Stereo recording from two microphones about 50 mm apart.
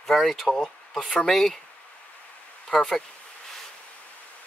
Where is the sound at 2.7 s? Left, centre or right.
Centre.